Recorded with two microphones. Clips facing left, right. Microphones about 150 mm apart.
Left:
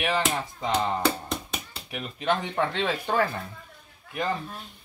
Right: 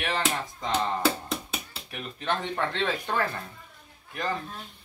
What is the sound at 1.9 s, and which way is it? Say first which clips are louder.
Speech: left 4 dB; 15° left (ahead or behind).